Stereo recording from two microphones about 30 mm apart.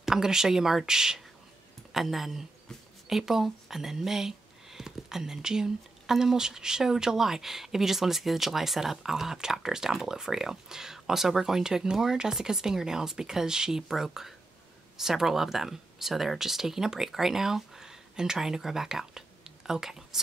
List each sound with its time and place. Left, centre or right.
0.0 s speech: centre
1.9 s speech: centre